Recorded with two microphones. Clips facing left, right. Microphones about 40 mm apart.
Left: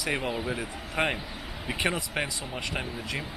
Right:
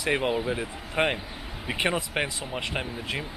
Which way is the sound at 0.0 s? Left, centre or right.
Right.